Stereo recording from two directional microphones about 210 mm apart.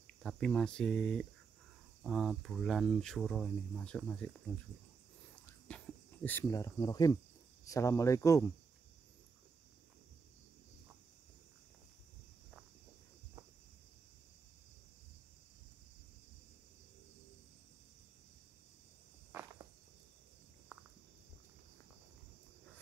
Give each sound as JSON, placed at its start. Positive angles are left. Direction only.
{"t": 0.0, "sound": "speech", "side_deg": 5}
{"t": 5.7, "sound": "a sound", "side_deg": 5}
{"t": 6.2, "sound": "cricket", "side_deg": 10}